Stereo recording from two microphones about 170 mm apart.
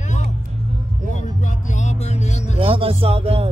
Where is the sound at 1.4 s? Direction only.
45° left (ahead or behind).